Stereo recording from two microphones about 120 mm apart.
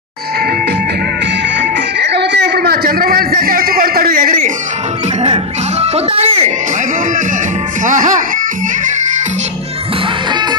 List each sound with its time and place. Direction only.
5.2 s speech: 55° right (ahead or behind)
7.8 s speech: 90° right